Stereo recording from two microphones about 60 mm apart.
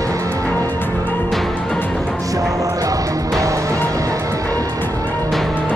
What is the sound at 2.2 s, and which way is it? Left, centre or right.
Music, right.